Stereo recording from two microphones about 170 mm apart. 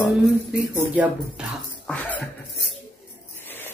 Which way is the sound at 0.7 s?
10° right (ahead or behind).